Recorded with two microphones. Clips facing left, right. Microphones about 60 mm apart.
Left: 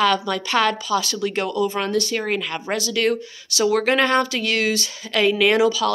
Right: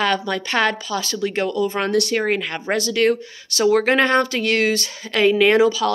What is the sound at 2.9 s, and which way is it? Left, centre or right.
A woman's voice, right.